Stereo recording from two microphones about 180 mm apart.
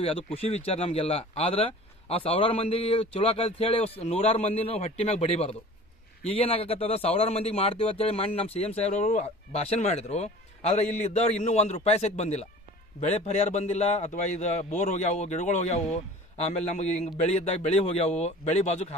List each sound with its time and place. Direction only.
0.0 s a man's voice: 35° left (ahead or behind)